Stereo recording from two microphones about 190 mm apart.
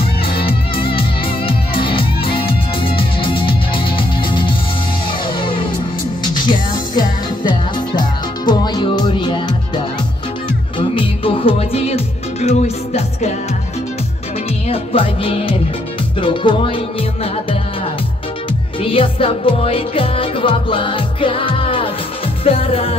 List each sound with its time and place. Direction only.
0.3 s music: 25° left (ahead or behind)
6.3 s music: 25° left (ahead or behind)
14.7 s speech: 30° left (ahead or behind)
16.2 s music: 25° left (ahead or behind)
18.8 s music: 30° left (ahead or behind)